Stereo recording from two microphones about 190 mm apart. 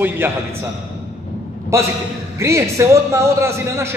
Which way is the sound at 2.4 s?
15° right (ahead or behind).